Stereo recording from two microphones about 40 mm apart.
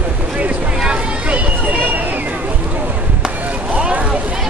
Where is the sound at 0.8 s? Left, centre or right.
Right.